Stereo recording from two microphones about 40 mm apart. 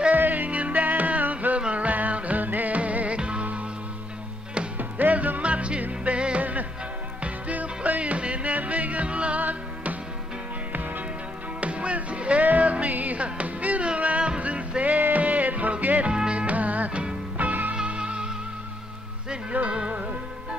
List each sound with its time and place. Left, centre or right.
0.1 s music: right
4.7 s music: right
5.4 s music: right
11.6 s music: right
14.8 s music: right
16.1 s music: right
16.3 s music: right
17.7 s music: right
19.7 s music: right